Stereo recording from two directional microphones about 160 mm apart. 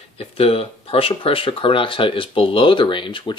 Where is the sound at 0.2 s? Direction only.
35° left (ahead or behind).